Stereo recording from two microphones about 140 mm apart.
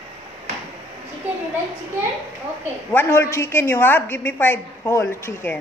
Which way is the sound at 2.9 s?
15° left (ahead or behind).